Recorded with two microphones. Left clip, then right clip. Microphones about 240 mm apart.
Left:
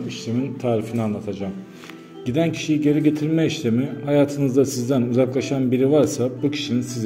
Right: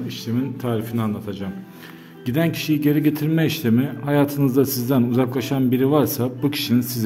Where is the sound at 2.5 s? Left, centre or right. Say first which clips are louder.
Even; right.